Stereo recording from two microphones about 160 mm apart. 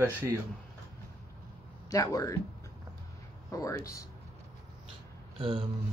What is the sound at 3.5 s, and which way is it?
Speech, 20° left (ahead or behind).